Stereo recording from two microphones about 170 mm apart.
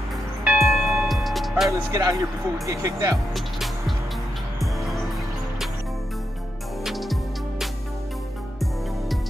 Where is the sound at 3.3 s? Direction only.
Centre (ahead or behind).